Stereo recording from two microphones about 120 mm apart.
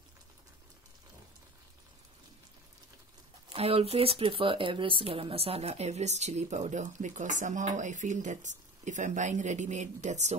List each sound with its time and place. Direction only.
3.5 s speech: 55° right (ahead or behind); by 10.3 s 75° right (ahead or behind)